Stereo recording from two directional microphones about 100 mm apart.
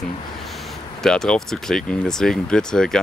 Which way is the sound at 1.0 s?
5° left (ahead or behind).